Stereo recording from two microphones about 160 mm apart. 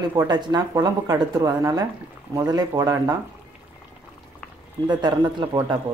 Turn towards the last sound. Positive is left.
turn(degrees=-25)  # may be behind; listen again after turning